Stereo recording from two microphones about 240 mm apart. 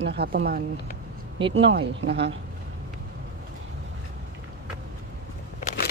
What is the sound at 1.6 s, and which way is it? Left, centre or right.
Speech, right.